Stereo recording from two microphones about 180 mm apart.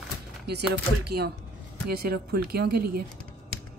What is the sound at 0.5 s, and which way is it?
Speech, 65° right (ahead or behind).